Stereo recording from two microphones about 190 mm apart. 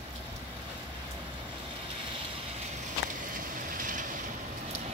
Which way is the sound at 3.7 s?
45° right (ahead or behind).